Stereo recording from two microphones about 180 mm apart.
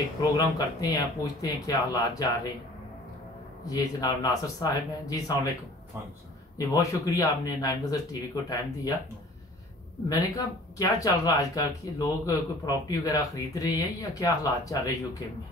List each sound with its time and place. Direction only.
0.2 s speech: 20° left (ahead or behind)
3.6 s speech: 20° left (ahead or behind)
6.7 s speech: 20° left (ahead or behind)
10.0 s speech: 20° left (ahead or behind)